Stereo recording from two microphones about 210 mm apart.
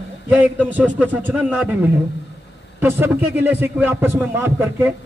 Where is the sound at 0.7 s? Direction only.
10° right (ahead or behind).